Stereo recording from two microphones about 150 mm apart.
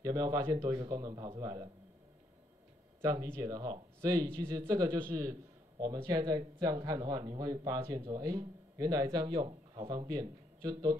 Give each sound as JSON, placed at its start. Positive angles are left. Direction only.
{"t": 0.0, "sound": "a man's voice", "side_deg": -25}
{"t": 3.0, "sound": "a man's voice", "side_deg": -25}